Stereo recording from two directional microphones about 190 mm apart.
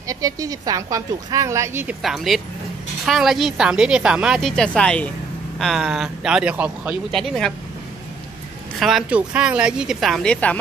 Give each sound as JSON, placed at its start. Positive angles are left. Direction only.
{"t": 0.1, "sound": "a woman's voice", "side_deg": -20}
{"t": 2.0, "sound": "a woman's voice", "side_deg": 0}
{"t": 8.7, "sound": "a woman's voice", "side_deg": 0}